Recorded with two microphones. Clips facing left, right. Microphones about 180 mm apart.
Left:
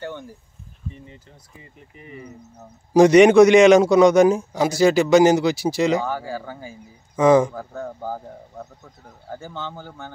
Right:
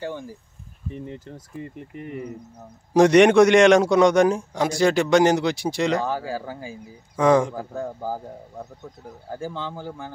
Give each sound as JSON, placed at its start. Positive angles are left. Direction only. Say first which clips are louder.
{"t": 0.0, "sound": "a man's voice", "louder": "right 2 dB", "side_deg": -5}
{"t": 0.9, "sound": "speech", "louder": "right 9 dB", "side_deg": -55}
{"t": 2.9, "sound": "a man's voice", "louder": "left 3 dB", "side_deg": 0}
{"t": 6.0, "sound": "speech", "louder": "right 1 dB", "side_deg": -10}
{"t": 7.2, "sound": "a man's voice", "louder": "left 3 dB", "side_deg": 0}
{"t": 7.5, "sound": "speech", "louder": "right 1 dB", "side_deg": -10}
{"t": 9.3, "sound": "speech", "louder": "right 2 dB", "side_deg": -10}